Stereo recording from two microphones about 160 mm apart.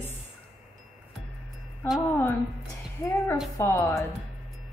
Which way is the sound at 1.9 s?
15° left (ahead or behind).